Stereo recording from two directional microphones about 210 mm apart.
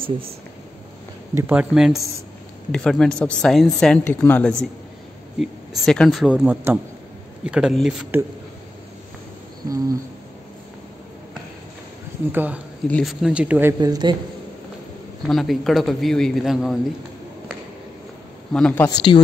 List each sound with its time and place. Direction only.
1.3 s a man's voice: 5° right (ahead or behind)
5.9 s a man's voice: centre (ahead or behind)
9.7 s speech: 15° right (ahead or behind)
12.3 s speech: 10° right (ahead or behind)
12.8 s a man's voice: centre (ahead or behind); by 14.1 s 20° right (ahead or behind)
15.2 s a man's voice: centre (ahead or behind)
18.5 s a man's voice: 5° left (ahead or behind)
18.9 s a woman's voice: 20° left (ahead or behind)